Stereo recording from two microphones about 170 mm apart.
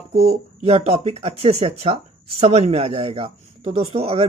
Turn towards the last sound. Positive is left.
turn(degrees=-35)  # may be behind; listen again after turning